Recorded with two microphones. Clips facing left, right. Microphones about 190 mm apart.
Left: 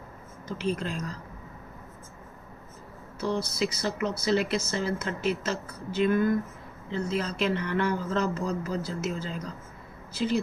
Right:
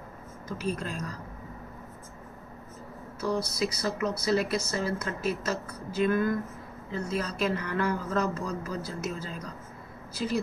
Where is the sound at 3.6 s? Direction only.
25° left (ahead or behind).